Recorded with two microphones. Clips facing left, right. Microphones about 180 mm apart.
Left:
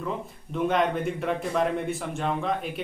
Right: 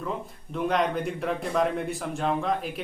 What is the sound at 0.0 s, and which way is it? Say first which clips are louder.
A man's voice: left 1 dB; centre (ahead or behind).